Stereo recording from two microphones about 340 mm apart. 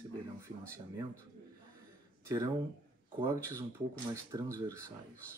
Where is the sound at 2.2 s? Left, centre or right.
Centre.